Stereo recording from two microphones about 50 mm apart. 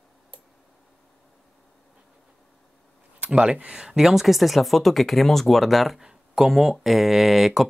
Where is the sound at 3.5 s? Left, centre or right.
Right; by 6.0 s centre.